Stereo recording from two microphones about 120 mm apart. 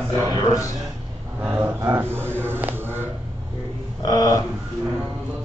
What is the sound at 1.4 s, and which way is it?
Speech, 20° right (ahead or behind).